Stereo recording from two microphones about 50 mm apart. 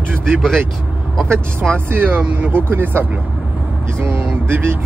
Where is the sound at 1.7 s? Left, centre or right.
Right.